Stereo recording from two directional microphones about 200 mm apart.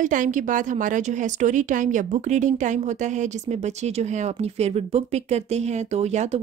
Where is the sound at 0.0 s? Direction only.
40° right (ahead or behind).